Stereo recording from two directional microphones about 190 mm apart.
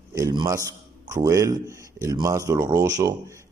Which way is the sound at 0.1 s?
20° right (ahead or behind).